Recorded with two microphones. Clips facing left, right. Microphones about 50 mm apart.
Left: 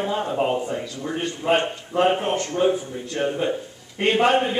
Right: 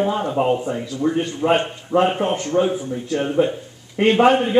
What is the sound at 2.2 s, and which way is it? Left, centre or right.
A man's voice, centre.